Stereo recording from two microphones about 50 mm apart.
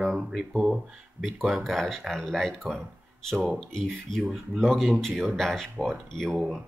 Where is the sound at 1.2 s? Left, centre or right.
Centre.